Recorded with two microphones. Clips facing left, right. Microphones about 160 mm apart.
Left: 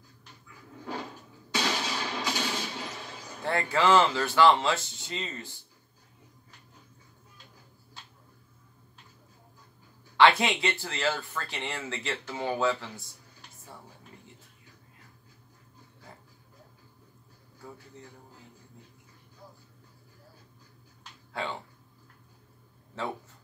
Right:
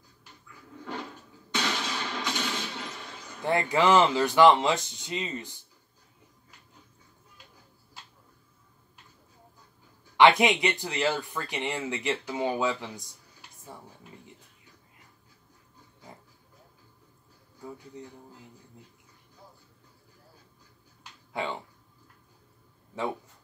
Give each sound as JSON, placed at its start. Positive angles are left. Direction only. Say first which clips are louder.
{"t": 1.5, "sound": "music", "louder": "left 1 dB", "side_deg": 5}
{"t": 3.4, "sound": "speech", "louder": "right 2 dB", "side_deg": -15}
{"t": 10.1, "sound": "speech", "louder": "right 2 dB", "side_deg": -15}
{"t": 17.9, "sound": "speech", "louder": "right 5 dB", "side_deg": -15}
{"t": 21.4, "sound": "speech", "louder": "right 2 dB", "side_deg": -15}
{"t": 23.0, "sound": "speech", "louder": "right 3 dB", "side_deg": -15}